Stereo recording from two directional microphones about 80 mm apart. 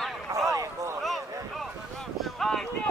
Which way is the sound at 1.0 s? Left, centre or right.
Centre.